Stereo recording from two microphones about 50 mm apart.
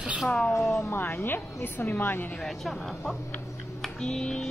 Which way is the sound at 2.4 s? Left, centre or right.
Centre.